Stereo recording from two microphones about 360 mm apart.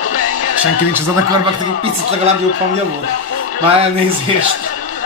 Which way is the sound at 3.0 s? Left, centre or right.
Left.